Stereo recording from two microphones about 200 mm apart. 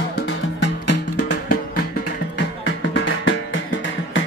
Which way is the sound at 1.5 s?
50° left (ahead or behind).